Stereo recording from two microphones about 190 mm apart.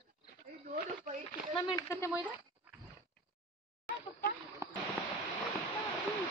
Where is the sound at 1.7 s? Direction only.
15° left (ahead or behind).